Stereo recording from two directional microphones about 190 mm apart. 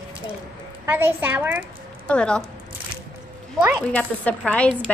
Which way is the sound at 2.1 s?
5° left (ahead or behind).